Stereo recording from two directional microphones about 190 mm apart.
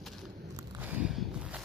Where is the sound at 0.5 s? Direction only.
10° right (ahead or behind).